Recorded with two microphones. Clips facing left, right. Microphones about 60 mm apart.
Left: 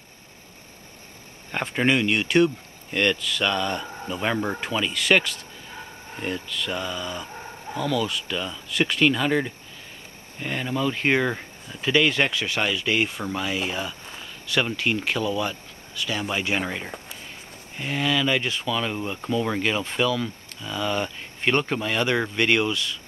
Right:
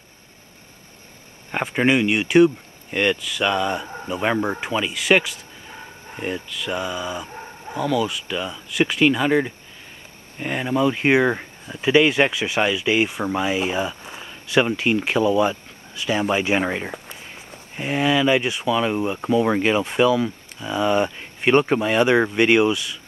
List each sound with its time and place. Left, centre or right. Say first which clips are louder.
1.5 s speech: right 3 dB; centre